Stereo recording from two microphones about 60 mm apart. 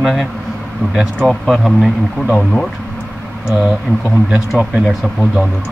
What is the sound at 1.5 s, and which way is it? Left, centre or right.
Speech, centre.